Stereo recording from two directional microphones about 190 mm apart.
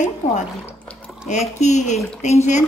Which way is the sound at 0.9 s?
Centre (ahead or behind).